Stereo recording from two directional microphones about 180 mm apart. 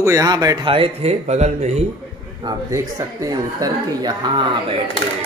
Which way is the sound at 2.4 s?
15° right (ahead or behind).